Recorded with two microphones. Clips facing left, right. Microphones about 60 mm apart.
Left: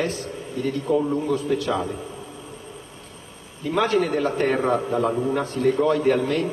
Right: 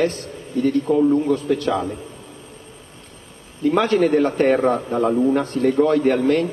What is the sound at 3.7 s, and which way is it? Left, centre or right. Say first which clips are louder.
A man's voice: right 3 dB; right.